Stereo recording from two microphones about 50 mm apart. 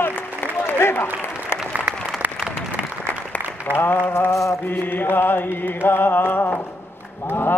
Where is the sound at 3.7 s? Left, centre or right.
Left.